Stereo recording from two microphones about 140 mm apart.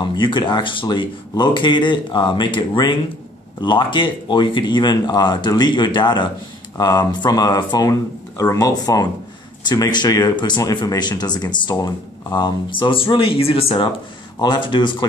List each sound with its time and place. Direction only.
0.0 s speech: 35° left (ahead or behind)
14.4 s speech: 30° left (ahead or behind)